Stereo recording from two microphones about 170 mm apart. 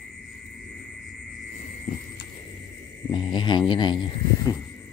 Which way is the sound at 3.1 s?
30° left (ahead or behind).